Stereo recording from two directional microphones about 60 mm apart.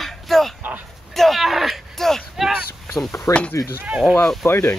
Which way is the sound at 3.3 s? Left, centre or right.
Left.